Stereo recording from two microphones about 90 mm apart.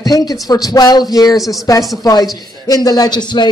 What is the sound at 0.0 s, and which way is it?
Speech, 45° left (ahead or behind).